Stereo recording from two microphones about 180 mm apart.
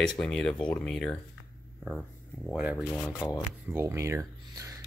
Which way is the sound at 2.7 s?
15° left (ahead or behind).